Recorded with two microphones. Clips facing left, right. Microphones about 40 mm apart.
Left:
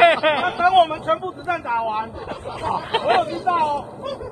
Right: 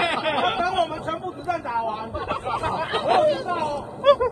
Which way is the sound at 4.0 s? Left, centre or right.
Right.